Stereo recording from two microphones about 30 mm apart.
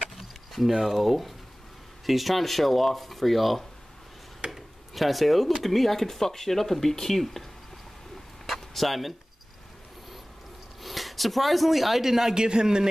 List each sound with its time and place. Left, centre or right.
0.1 s a sound: centre
2.0 s speech: centre
8.5 s speech: centre
10.8 s speech: centre
12.4 s a man's voice: right